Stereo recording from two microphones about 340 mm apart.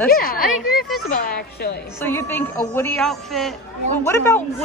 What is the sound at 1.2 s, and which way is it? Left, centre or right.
Speech, left.